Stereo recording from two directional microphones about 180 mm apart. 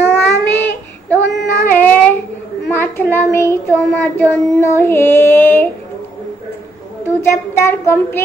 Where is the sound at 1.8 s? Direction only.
10° left (ahead or behind).